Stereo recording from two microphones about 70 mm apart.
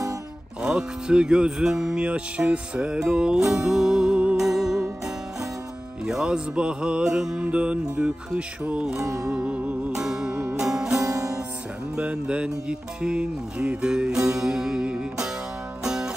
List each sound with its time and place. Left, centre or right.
0.6 s music: centre
6.0 s music: centre
11.0 s music: right
11.9 s music: centre